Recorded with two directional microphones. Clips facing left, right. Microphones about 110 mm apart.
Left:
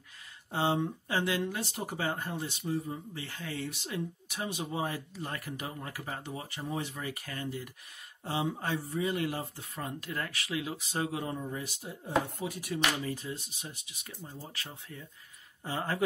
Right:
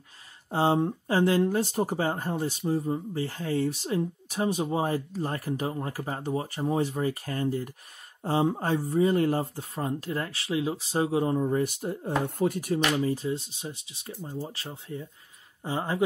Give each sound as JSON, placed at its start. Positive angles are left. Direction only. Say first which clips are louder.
{"t": 0.5, "sound": "speech", "louder": "right 6 dB", "side_deg": -35}
{"t": 11.4, "sound": "speech", "louder": "right 12 dB", "side_deg": -50}
{"t": 12.9, "sound": "speech", "louder": "right 9 dB", "side_deg": -30}